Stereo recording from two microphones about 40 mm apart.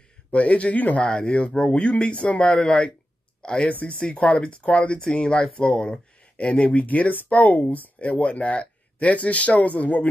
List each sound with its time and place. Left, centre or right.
0.3 s speech: left
1.0 s speech: centre
1.3 s speech: left
6.7 s speech: left